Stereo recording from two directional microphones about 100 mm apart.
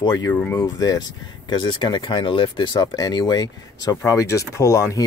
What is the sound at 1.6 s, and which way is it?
Speech, 50° left (ahead or behind).